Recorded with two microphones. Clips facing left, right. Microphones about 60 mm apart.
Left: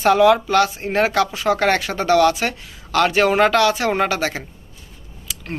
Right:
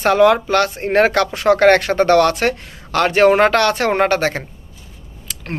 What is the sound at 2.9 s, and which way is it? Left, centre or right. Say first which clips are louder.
Speech: right 3 dB; right.